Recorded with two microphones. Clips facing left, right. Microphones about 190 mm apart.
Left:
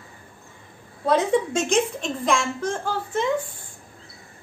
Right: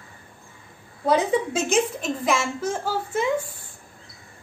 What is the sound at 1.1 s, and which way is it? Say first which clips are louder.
A woman's voice: left 1 dB; 5° right (ahead or behind).